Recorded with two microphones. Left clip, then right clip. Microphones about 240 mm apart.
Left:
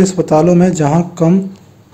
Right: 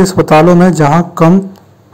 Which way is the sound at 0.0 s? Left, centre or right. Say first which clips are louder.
Right 5 dB; centre.